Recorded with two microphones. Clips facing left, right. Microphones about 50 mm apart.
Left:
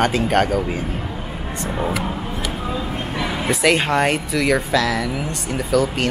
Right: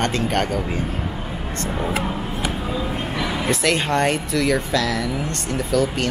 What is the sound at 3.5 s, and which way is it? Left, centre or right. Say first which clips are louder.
Speech: left 4 dB; centre.